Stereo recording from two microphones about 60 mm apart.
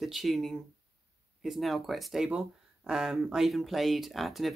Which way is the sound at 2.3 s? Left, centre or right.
Centre.